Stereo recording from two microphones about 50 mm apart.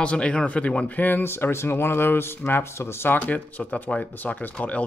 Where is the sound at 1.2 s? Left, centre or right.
Left.